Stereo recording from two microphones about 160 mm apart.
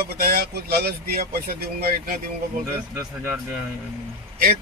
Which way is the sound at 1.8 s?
65° right (ahead or behind).